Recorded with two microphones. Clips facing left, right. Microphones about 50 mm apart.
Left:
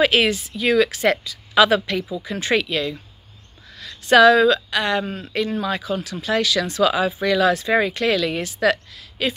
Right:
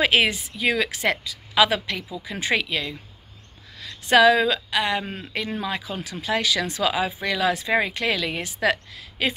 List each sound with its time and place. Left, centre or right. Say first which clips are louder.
0.0 s speech: left 3 dB; centre